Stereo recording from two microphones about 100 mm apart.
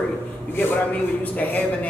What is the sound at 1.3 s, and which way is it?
Speech, 15° left (ahead or behind).